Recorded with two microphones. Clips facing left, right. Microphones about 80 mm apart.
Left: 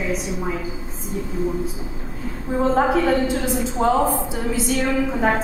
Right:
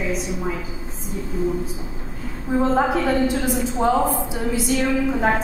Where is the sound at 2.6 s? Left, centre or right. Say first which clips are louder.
Left 2 dB; centre.